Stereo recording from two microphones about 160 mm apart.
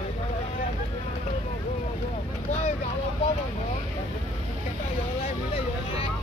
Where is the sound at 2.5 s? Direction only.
40° left (ahead or behind).